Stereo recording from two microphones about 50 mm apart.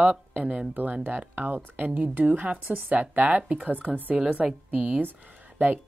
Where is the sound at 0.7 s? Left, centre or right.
Right.